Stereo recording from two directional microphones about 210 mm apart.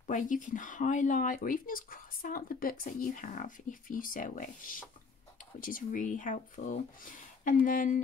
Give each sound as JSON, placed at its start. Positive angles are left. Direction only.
{"t": 0.0, "sound": "speech", "side_deg": 40}